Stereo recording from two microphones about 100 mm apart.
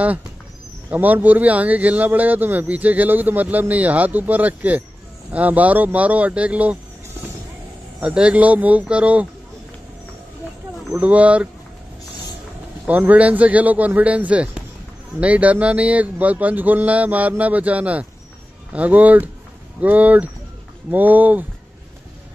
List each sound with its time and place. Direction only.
0.8 s a man's voice: 15° right (ahead or behind)
8.0 s a man's voice: 10° right (ahead or behind)
11.0 s a man's voice: 15° right (ahead or behind)
12.8 s a man's voice: 15° right (ahead or behind)